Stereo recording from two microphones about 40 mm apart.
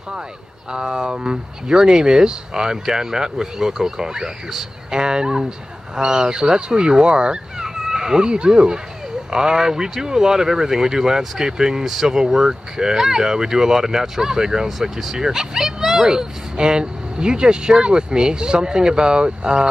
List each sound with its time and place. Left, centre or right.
0.7 s speech: centre